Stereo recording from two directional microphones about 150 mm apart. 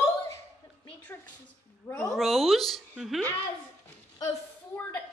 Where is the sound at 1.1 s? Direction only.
15° left (ahead or behind).